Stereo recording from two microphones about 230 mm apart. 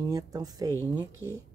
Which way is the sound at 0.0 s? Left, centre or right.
Centre.